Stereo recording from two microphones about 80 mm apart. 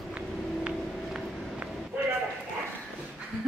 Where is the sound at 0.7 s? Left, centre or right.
Centre.